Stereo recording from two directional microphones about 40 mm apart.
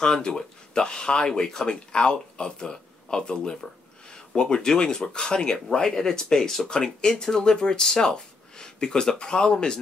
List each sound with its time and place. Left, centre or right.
0.0 s speech: left